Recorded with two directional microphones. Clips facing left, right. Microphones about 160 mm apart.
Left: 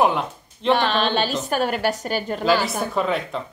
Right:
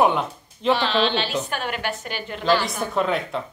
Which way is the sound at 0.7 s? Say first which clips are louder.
Left 1 dB; 50° left (ahead or behind).